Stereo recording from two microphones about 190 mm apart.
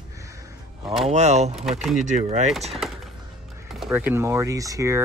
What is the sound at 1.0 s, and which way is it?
Speech, 35° right (ahead or behind).